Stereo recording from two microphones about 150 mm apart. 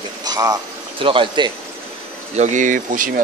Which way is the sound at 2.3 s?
55° right (ahead or behind).